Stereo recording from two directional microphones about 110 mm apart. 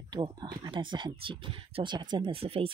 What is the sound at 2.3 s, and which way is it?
Speech, 60° right (ahead or behind).